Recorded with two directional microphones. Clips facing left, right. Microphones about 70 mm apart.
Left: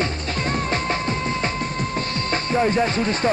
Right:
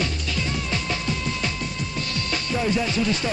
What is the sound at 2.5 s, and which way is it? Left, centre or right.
Speech, left.